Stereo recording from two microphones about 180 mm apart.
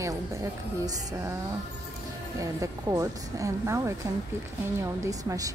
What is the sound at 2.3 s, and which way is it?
A woman's voice, 20° right (ahead or behind).